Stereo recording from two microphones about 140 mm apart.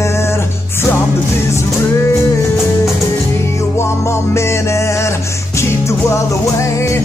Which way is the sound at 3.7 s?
20° left (ahead or behind).